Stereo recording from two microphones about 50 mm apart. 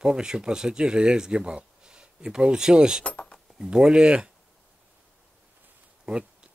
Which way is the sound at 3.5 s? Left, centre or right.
Centre.